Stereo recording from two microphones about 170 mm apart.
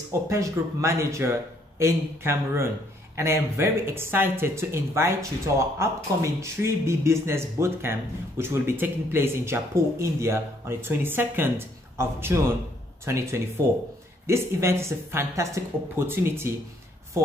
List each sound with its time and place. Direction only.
0.3 s speech: 15° right (ahead or behind)